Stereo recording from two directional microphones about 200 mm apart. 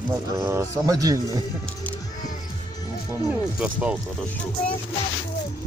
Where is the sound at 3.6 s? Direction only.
5° right (ahead or behind).